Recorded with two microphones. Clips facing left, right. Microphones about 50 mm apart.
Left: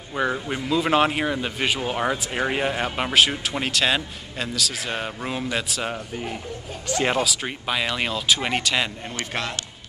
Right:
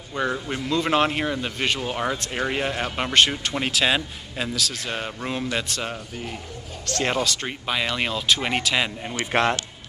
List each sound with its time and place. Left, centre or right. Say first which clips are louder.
0.1 s speech: left 1 dB; centre
9.1 s a man's voice: right 7 dB; right